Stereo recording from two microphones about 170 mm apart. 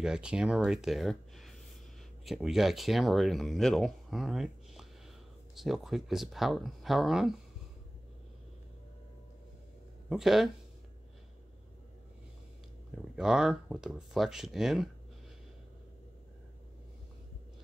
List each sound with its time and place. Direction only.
0.0 s speech: 5° right (ahead or behind)
10.0 s speech: centre (ahead or behind)
13.1 s speech: 5° right (ahead or behind)